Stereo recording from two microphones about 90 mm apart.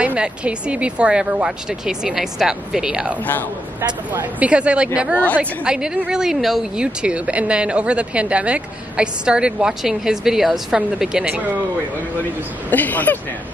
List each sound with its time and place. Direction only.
0.0 s a woman's voice: 15° right (ahead or behind)
4.1 s a woman's voice: 20° right (ahead or behind)
5.1 s a woman's voice: 15° left (ahead or behind)
5.4 s a woman's voice: 10° right (ahead or behind)
12.6 s speech: 20° left (ahead or behind)